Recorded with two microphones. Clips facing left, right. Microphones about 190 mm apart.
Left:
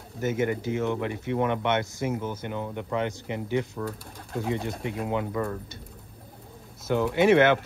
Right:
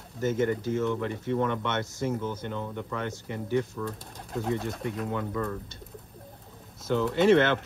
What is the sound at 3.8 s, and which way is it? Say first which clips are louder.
Speech: left 1 dB; 35° left (ahead or behind).